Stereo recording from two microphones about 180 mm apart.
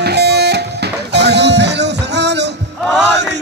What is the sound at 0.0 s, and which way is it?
Music, 70° right (ahead or behind).